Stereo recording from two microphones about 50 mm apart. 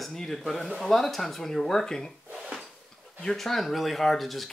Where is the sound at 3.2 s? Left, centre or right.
Centre.